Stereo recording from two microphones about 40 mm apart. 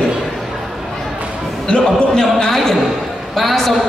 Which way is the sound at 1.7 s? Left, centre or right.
Centre.